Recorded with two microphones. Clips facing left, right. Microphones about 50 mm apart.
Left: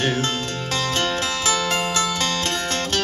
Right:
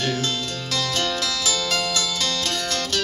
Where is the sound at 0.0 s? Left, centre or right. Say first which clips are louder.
Left 2 dB; left.